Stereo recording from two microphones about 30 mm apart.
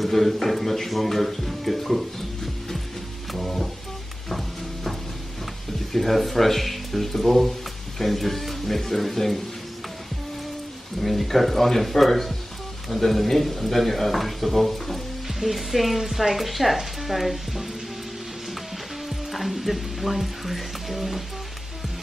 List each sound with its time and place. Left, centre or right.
0.0 s speech: centre
3.3 s music: centre
5.9 s speech: centre
11.0 s speech: centre
19.0 s music: centre